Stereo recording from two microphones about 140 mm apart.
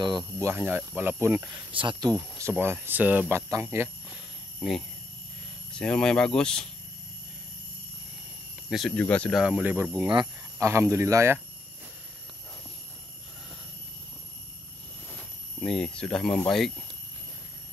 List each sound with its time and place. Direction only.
0.4 s speech: 15° right (ahead or behind)
1.5 s speech: 35° right (ahead or behind)
2.1 s speech: 20° right (ahead or behind)
4.6 s speech: centre (ahead or behind)
8.6 s speech: centre (ahead or behind)
9.4 s speech: 10° right (ahead or behind)
9.9 s speech: 30° right (ahead or behind)
10.6 s a man's voice: 20° right (ahead or behind)
15.0 s speech: 5° left (ahead or behind)